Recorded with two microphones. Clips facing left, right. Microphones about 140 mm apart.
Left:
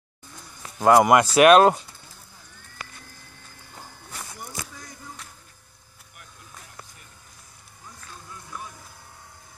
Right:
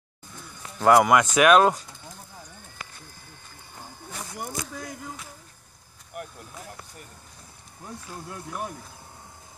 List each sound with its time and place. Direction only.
0.8 s speech: 20° left (ahead or behind)
1.1 s speech: 35° left (ahead or behind)
4.5 s a sound: 65° right (ahead or behind)
7.8 s speech: 65° right (ahead or behind)